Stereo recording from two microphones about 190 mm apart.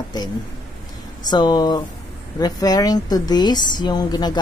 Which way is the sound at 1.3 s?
20° left (ahead or behind).